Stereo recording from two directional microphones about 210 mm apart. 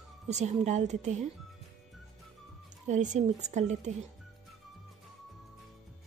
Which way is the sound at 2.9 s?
35° right (ahead or behind).